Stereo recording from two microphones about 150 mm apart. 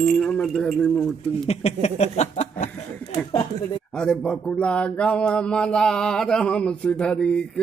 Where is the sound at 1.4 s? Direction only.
45° left (ahead or behind).